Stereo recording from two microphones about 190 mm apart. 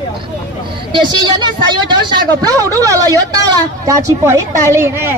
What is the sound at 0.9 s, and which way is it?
A woman's voice, 25° right (ahead or behind).